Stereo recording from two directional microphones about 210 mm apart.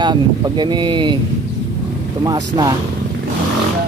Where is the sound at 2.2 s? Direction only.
20° right (ahead or behind).